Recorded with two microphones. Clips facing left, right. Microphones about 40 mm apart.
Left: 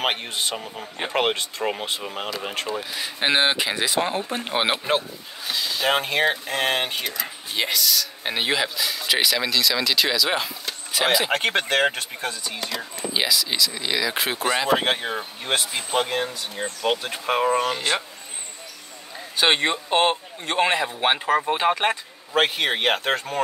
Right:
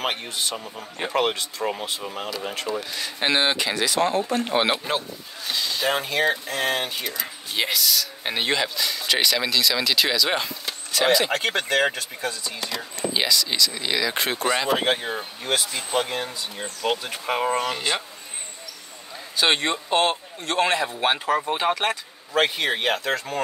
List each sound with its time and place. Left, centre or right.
0.0 s speech: left
2.7 s a man's voice: centre
5.5 s a sound: centre
5.9 s speech: left
7.1 s speech: centre
10.9 s a man's voice: centre
11.3 s speech: left
12.5 s a man's voice: centre
14.9 s speech: left
17.1 s a man's voice: centre
19.3 s a man's voice: centre; by 23.2 s left